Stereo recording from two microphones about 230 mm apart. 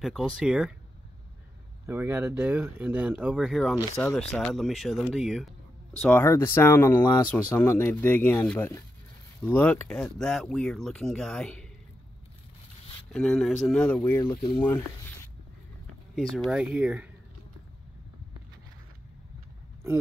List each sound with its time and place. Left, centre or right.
0.0 s speech: centre
1.9 s speech: centre
13.1 s speech: centre
14.3 s speech: left
16.4 s speech: centre